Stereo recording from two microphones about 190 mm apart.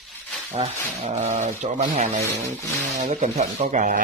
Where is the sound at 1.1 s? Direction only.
35° right (ahead or behind).